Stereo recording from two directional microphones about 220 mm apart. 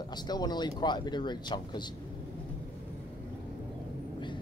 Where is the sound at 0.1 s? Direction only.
20° left (ahead or behind).